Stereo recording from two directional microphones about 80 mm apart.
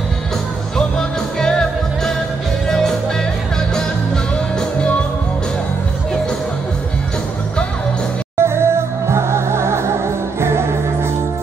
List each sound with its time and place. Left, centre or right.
0.7 s music: centre
8.4 s music: right